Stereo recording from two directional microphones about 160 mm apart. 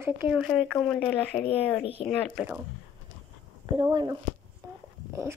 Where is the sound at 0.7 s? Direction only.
5° left (ahead or behind).